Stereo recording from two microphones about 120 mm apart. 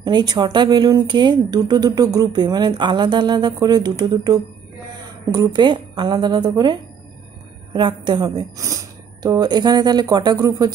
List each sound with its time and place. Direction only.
0.0 s a woman's voice: 35° right (ahead or behind)